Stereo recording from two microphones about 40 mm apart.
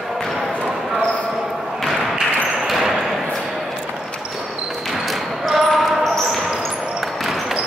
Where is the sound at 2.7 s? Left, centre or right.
Centre.